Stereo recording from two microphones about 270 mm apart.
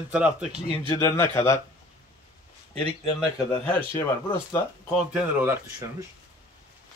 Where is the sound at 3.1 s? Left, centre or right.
Centre.